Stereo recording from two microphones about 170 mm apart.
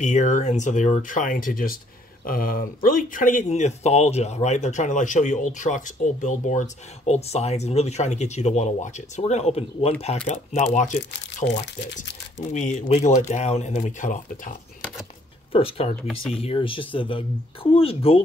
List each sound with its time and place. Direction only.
0.0 s speech: 45° left (ahead or behind)
11.4 s speech: 90° left
12.4 s speech: 45° left (ahead or behind)
15.5 s speech: 35° left (ahead or behind)